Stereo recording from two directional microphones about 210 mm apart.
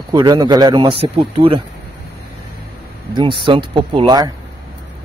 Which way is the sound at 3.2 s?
25° right (ahead or behind).